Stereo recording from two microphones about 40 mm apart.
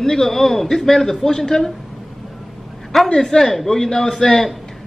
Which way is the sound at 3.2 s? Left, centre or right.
Centre.